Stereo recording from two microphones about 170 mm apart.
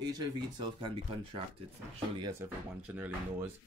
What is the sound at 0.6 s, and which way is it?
Speech, 30° right (ahead or behind).